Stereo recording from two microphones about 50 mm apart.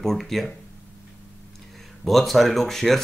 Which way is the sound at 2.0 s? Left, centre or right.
Centre.